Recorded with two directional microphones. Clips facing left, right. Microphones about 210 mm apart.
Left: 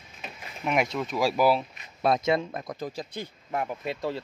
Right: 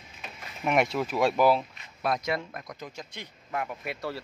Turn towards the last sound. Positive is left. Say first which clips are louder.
# left 4 dB
turn(degrees=20)  # may be behind; listen again after turning